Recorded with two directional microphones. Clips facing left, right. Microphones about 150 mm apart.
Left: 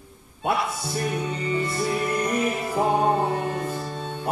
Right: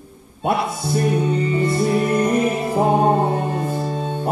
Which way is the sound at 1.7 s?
30° right (ahead or behind).